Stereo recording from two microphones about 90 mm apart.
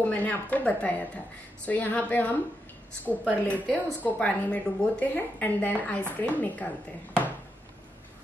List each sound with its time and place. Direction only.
0.0 s a woman's voice: 15° left (ahead or behind)
3.4 s a woman's voice: 15° left (ahead or behind)